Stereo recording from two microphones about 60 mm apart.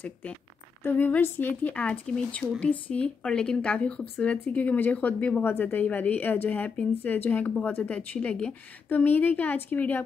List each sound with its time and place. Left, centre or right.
0.8 s speech: left
5.4 s a woman's voice: left; by 8.5 s centre
8.8 s a woman's voice: left